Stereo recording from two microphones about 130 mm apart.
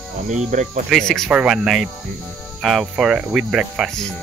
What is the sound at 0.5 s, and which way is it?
Speech, 90° right.